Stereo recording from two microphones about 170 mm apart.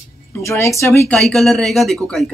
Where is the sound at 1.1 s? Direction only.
Centre (ahead or behind).